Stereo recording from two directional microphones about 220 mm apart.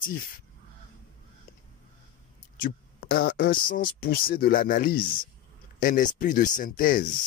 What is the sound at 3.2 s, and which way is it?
Speech, 40° left (ahead or behind).